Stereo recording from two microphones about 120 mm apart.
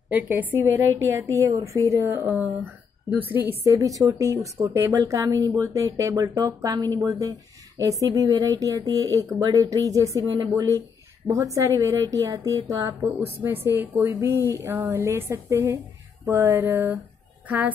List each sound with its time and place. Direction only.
0.1 s speech: 15° right (ahead or behind)